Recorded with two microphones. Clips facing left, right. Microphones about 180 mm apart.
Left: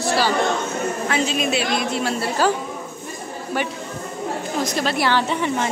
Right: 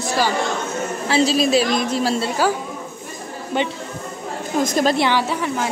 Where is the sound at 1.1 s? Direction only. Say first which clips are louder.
Right 7 dB; 35° right (ahead or behind).